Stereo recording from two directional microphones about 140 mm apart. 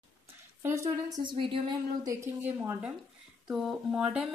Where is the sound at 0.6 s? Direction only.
20° right (ahead or behind); by 1.6 s 35° right (ahead or behind).